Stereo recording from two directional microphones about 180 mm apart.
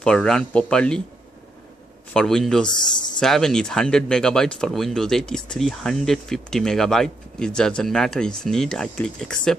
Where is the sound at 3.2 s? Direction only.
Centre (ahead or behind).